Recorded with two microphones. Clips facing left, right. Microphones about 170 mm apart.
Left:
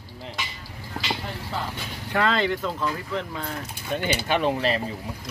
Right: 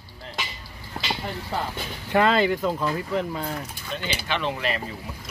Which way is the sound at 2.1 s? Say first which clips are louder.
Right 3 dB; 15° right (ahead or behind).